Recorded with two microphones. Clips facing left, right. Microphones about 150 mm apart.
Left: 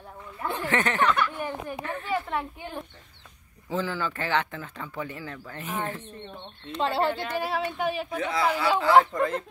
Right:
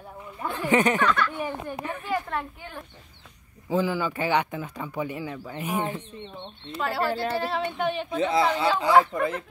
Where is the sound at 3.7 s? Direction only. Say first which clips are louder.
Right 4 dB; 10° right (ahead or behind).